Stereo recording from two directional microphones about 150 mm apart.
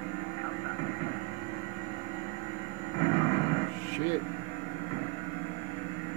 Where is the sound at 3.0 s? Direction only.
30° left (ahead or behind).